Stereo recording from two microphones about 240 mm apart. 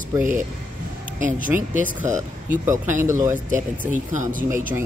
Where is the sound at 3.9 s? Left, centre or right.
Right.